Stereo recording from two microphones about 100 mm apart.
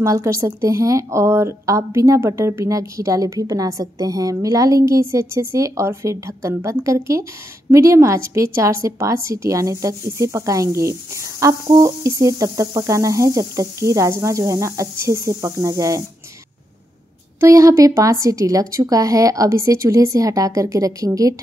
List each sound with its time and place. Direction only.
0.0 s a woman's voice: 30° right (ahead or behind)
17.4 s a woman's voice: 30° right (ahead or behind)